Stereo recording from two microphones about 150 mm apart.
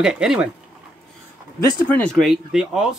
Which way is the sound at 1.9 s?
5° left (ahead or behind).